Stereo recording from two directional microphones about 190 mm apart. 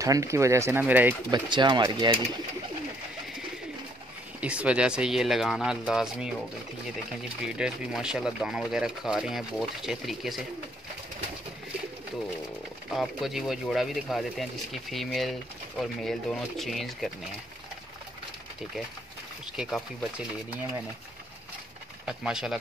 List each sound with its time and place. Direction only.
0.0 s speech: 15° right (ahead or behind)
1.3 s speech: 25° right (ahead or behind)
4.4 s speech: 5° right (ahead or behind)
7.4 s speech: 5° right (ahead or behind)
12.9 s speech: centre (ahead or behind)
19.5 s speech: centre (ahead or behind)
22.0 s speech: 5° right (ahead or behind)